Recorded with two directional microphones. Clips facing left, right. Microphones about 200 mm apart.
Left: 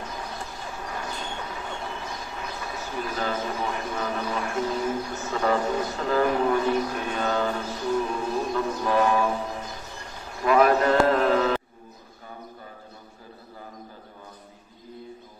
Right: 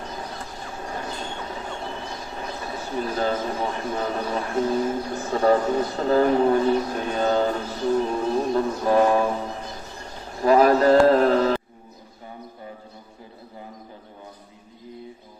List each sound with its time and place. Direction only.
0.8 s train: 30° right (ahead or behind)
2.3 s speech: 35° right (ahead or behind)
8.1 s music: 35° right (ahead or behind)
10.3 s a sound: 35° right (ahead or behind)